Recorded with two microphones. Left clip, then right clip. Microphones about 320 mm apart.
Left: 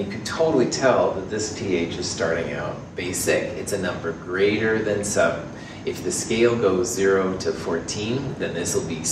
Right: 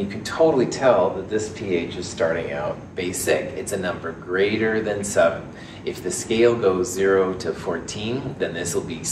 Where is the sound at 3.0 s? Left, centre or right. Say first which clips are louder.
Right 1 dB; right.